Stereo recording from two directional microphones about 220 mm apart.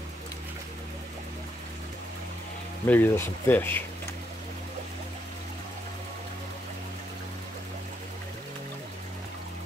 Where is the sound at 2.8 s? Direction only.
10° left (ahead or behind).